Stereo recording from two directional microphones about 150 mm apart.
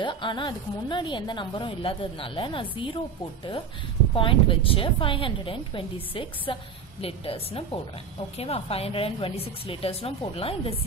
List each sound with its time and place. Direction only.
0.0 s speech: 30° left (ahead or behind)
4.1 s speech: 35° left (ahead or behind)